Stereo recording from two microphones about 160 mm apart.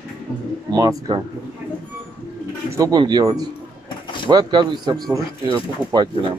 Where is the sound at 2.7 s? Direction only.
20° right (ahead or behind).